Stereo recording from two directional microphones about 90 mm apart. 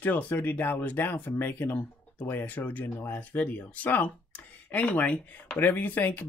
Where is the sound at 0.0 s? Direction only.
20° left (ahead or behind).